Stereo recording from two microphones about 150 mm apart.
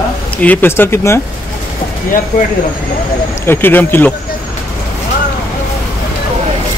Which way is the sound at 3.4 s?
15° left (ahead or behind).